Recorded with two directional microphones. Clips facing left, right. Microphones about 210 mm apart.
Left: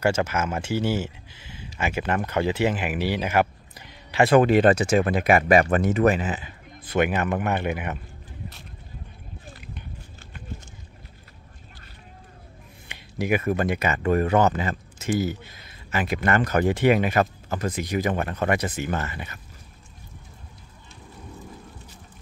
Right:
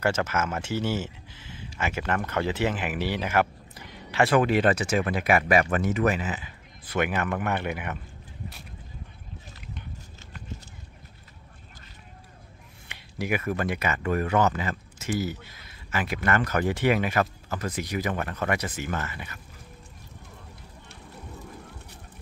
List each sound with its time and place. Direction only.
0.0 s speech: 15° left (ahead or behind)
4.4 s speech: 30° left (ahead or behind)
6.9 s speech: 20° left (ahead or behind)
12.9 s speech: 20° left (ahead or behind)